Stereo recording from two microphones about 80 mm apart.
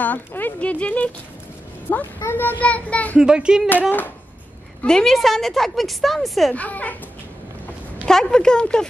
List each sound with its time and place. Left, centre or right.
0.0 s speech: left
2.6 s speech: centre
3.2 s speech: centre
4.8 s a woman's voice: centre
6.5 s speech: centre
8.0 s speech: centre